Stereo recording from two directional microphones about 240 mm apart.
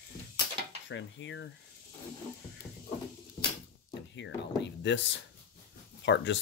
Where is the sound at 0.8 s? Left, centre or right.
Left.